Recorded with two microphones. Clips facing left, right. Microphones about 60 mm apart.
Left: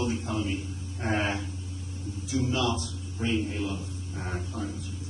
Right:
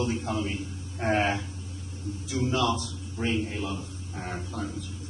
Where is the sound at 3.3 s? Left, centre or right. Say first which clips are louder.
Even; right.